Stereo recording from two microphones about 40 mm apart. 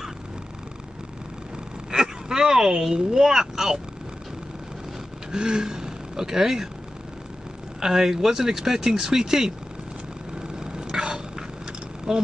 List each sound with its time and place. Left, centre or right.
1.9 s speech: centre
5.3 s speech: centre
7.8 s speech: centre
10.6 s a sound: centre
12.1 s speech: centre